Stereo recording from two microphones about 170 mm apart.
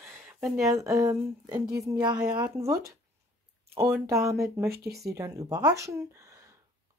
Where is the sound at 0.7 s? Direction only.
20° right (ahead or behind).